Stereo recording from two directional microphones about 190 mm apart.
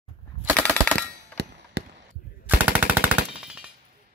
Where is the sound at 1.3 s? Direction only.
60° right (ahead or behind).